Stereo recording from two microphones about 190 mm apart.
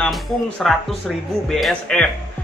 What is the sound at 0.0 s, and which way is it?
Speech, centre (ahead or behind).